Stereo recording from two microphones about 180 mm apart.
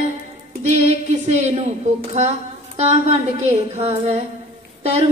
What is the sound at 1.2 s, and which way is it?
A woman's voice, 40° right (ahead or behind).